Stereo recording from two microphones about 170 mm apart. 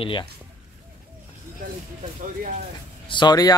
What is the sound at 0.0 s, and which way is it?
Speech, 30° left (ahead or behind).